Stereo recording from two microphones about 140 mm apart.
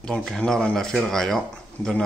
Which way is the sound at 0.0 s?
Centre (ahead or behind).